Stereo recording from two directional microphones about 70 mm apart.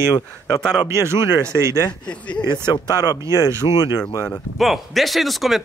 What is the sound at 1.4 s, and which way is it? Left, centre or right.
Speech, right.